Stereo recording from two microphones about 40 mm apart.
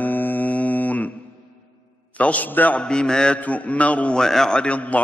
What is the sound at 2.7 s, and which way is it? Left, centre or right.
Speech, left.